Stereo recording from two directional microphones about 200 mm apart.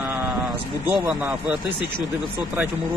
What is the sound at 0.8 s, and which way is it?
A man's voice, 10° right (ahead or behind).